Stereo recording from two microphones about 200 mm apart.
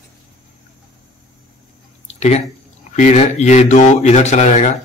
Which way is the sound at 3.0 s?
35° left (ahead or behind).